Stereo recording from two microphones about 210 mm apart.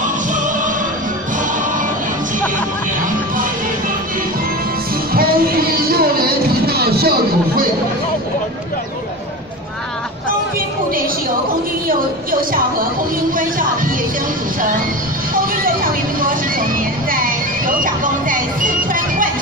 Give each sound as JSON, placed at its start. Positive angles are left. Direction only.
{"t": 0.0, "sound": "music", "side_deg": -40}
{"t": 5.1, "sound": "music", "side_deg": -45}
{"t": 12.3, "sound": "speech", "side_deg": -45}
{"t": 13.4, "sound": "music", "side_deg": -40}
{"t": 15.3, "sound": "vehicle", "side_deg": -45}